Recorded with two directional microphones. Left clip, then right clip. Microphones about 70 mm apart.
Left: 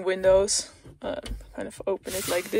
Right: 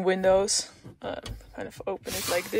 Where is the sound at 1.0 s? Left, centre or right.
Centre.